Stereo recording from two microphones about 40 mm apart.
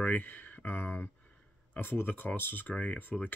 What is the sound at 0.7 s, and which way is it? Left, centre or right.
Speech, left.